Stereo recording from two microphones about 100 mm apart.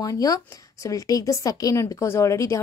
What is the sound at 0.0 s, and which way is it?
Speech, 35° left (ahead or behind).